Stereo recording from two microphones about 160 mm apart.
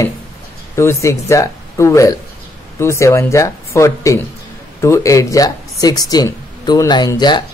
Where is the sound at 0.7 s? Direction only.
20° left (ahead or behind).